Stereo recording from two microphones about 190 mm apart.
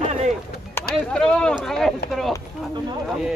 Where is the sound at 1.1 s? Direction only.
5° left (ahead or behind).